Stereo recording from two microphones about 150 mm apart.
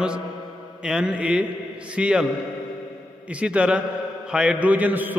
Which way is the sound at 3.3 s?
10° right (ahead or behind).